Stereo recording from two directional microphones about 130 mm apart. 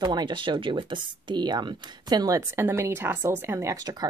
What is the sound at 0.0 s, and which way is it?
Speech, 30° right (ahead or behind).